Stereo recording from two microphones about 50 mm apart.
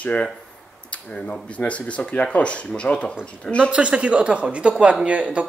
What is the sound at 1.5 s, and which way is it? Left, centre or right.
Speech, left.